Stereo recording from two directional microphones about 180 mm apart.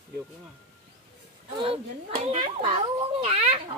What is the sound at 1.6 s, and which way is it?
Speech, 35° right (ahead or behind).